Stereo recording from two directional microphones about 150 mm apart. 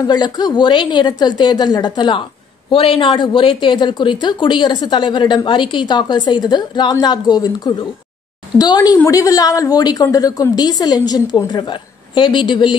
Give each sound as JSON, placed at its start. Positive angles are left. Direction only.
{"t": 0.0, "sound": "a woman's voice", "side_deg": 30}